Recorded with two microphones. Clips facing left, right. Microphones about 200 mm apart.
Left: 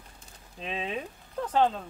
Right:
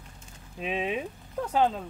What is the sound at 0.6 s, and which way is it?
Speech, 10° right (ahead or behind).